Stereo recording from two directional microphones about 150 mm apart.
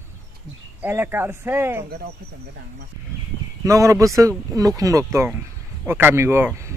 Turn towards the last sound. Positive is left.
turn(degrees=-15)  # may be behind; listen again after turning